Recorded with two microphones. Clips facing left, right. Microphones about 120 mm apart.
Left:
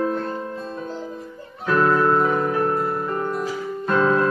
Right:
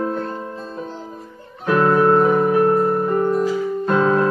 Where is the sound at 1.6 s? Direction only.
15° right (ahead or behind).